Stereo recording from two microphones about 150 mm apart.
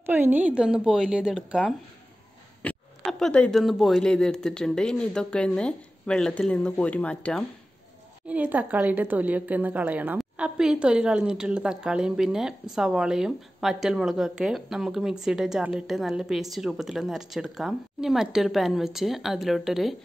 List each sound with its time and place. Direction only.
0.0 s speech: 15° right (ahead or behind); by 7.4 s 10° left (ahead or behind)
8.3 s a woman's voice: 10° right (ahead or behind)